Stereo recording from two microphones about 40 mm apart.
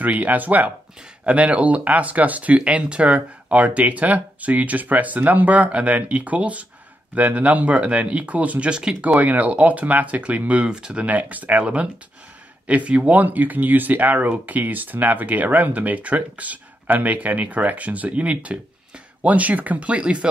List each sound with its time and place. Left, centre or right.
0.0 s speech: right
1.2 s speech: right
8.6 s speech: right
9.0 s speech: right
10.6 s speech: right
10.9 s speech: right
11.6 s speech: right
13.2 s speech: right